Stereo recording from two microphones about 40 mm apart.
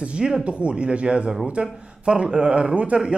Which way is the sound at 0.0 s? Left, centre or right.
Right.